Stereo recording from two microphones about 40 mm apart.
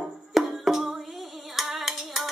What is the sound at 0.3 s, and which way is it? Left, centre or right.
Music, centre.